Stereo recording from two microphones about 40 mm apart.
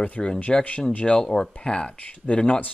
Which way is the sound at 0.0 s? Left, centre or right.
Left.